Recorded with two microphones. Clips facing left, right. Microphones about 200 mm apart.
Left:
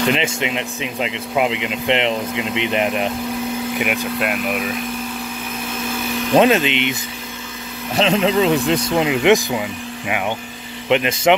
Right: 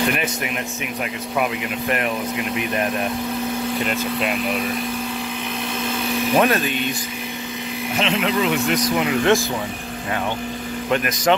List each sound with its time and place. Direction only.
0.1 s speech: 20° left (ahead or behind)
4.2 s speech: 5° left (ahead or behind)
6.3 s speech: 20° left (ahead or behind)
7.9 s speech: 30° left (ahead or behind)
10.9 s speech: 20° left (ahead or behind)